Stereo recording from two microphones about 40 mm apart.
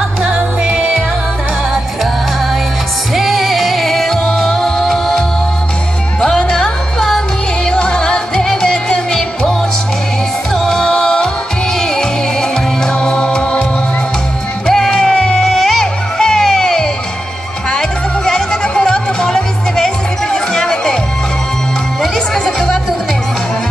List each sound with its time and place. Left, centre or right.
3.2 s music: centre
6.2 s music: centre
14.7 s music: centre
22.0 s music: centre